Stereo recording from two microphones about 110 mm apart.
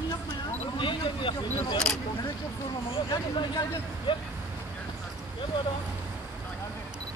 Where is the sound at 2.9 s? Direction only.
45° left (ahead or behind).